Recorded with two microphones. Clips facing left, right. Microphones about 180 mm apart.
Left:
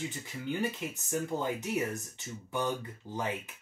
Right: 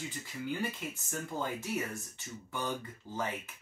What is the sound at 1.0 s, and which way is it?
Speech, 15° left (ahead or behind).